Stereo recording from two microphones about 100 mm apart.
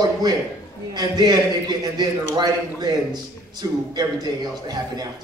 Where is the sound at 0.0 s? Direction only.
40° right (ahead or behind).